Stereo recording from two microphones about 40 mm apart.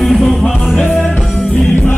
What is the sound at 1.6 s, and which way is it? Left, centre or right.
Music, left.